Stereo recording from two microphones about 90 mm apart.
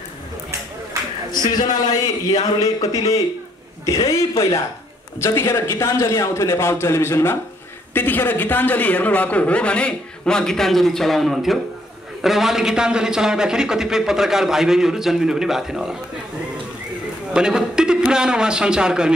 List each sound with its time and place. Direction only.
1.3 s a man's voice: 50° left (ahead or behind); by 16.0 s 5° right (ahead or behind)
17.3 s a man's voice: 10° right (ahead or behind)